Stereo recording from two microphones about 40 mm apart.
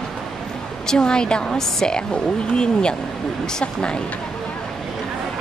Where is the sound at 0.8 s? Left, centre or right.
Centre.